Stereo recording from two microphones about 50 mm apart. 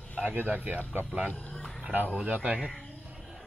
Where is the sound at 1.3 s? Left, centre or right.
Left.